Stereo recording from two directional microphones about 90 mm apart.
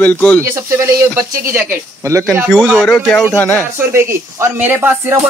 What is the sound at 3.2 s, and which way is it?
Speech, 25° left (ahead or behind).